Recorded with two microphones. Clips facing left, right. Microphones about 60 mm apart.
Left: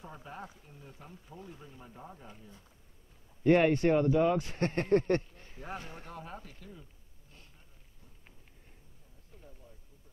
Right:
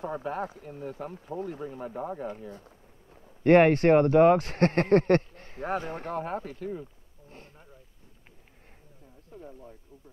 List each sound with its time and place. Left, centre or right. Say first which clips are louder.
0.0 s speech: right 13 dB; right
9.3 s speech: right 11 dB; right